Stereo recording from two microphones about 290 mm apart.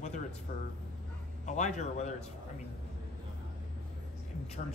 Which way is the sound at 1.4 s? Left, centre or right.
Left.